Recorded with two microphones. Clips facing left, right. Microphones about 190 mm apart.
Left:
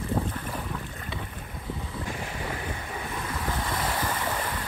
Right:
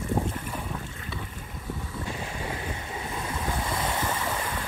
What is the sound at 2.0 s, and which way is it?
Wind, 25° right (ahead or behind).